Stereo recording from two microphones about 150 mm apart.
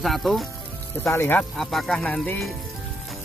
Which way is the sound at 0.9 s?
15° left (ahead or behind).